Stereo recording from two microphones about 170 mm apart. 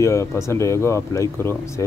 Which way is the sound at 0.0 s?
15° left (ahead or behind).